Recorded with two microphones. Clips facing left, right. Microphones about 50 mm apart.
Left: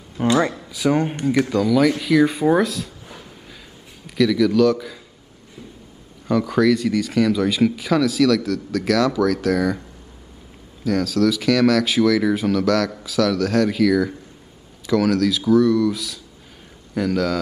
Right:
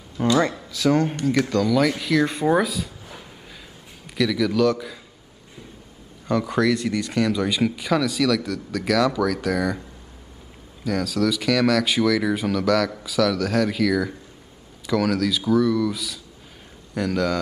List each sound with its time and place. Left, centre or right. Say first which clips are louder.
0.2 s speech: left 1 dB; centre
1.4 s speech: left 3 dB; centre
6.5 s speech: left 5 dB; centre